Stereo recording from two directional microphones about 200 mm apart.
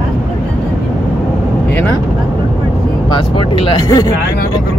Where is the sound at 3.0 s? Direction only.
25° left (ahead or behind).